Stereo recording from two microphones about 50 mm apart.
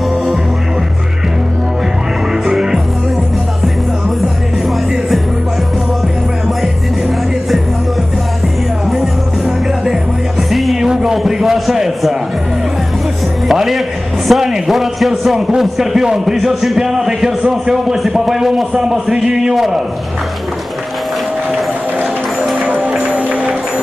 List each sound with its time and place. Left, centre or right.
2.4 s music: centre
10.5 s music: centre
10.9 s a sound: centre
13.5 s a sound: centre
15.3 s a man's voice: centre
17.9 s a man's voice: centre
22.8 s music: centre